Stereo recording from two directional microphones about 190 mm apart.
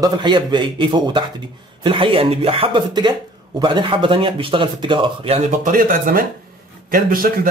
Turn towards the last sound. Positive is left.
turn(degrees=-50)  # may be behind; listen again after turning